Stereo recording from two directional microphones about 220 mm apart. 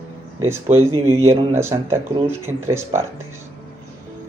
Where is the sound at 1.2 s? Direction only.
10° right (ahead or behind).